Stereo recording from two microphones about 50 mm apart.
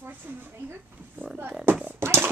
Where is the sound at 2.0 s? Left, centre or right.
Right.